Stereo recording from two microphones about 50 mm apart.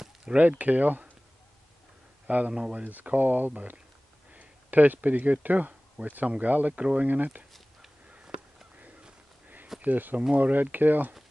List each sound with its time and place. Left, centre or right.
0.4 s speech: right
2.2 s speech: right
2.5 s speech: centre
2.8 s speech: right
9.8 s speech: right